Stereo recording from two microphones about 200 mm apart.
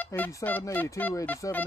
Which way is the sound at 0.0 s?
10° left (ahead or behind).